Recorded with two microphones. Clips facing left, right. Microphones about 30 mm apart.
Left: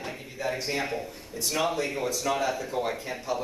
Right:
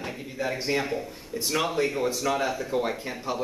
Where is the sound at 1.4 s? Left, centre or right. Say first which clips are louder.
Right 2 dB; centre.